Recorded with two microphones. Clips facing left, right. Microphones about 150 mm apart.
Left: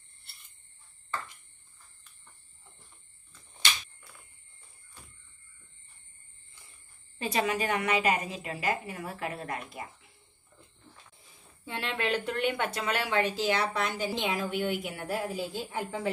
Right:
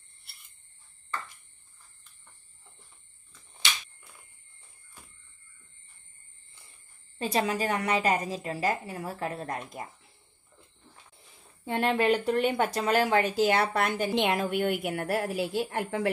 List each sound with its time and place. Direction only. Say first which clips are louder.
7.2 s a woman's voice: right 1 dB; 35° right (ahead or behind)
11.6 s a woman's voice: right 8 dB; 50° right (ahead or behind); by 16.1 s 65° right (ahead or behind)